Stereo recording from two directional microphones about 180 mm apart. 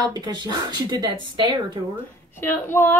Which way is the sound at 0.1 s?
25° right (ahead or behind).